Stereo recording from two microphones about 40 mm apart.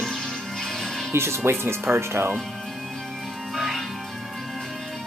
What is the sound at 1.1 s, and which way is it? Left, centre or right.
Speech, right.